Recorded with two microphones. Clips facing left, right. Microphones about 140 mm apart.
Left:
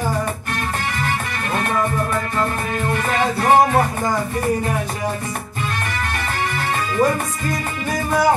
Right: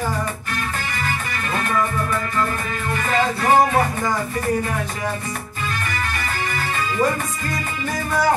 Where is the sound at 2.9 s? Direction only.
50° left (ahead or behind).